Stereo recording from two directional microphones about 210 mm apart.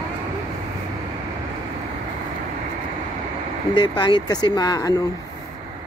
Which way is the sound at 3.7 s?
20° left (ahead or behind).